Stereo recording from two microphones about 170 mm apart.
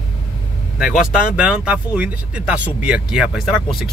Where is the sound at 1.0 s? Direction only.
5° right (ahead or behind).